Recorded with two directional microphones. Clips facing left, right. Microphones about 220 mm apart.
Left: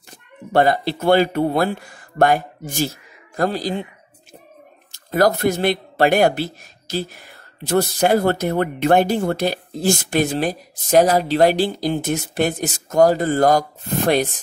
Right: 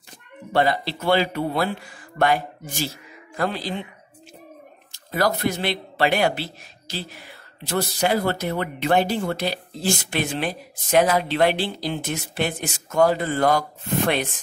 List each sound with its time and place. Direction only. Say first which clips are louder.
0.5 s speech: left 5 dB; 45° left (ahead or behind)
4.9 s speech: left 6 dB; 45° left (ahead or behind)